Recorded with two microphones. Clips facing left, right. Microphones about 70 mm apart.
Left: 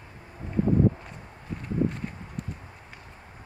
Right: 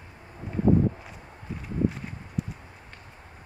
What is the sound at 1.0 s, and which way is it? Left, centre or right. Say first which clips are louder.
Walk: even; centre.